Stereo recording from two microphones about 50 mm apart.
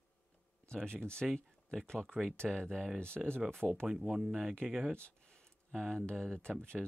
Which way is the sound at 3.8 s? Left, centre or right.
Centre.